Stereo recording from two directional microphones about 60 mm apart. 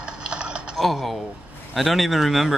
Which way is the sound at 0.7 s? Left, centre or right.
Centre.